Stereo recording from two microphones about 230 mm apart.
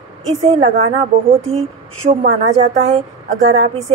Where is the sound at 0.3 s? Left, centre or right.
Right.